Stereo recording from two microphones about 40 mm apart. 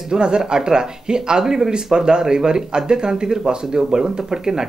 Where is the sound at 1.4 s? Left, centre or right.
Centre.